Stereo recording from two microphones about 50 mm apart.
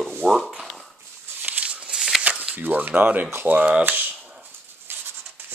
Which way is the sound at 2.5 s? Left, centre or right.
Right.